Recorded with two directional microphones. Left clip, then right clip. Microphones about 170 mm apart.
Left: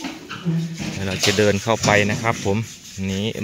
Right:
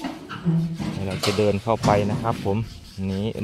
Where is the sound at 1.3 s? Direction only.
5° left (ahead or behind).